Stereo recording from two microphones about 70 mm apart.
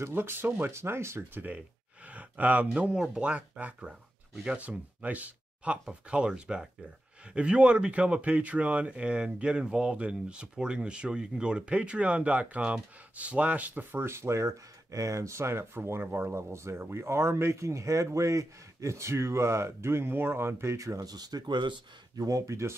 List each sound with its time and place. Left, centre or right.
0.0 s speech: right
2.0 s speech: right